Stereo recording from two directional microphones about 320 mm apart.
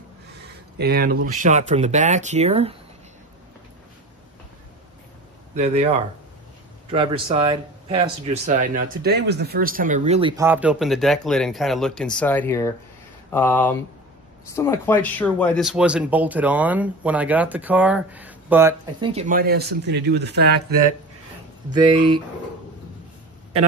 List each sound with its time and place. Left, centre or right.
0.7 s speech: right
5.6 s speech: centre
21.7 s speech: centre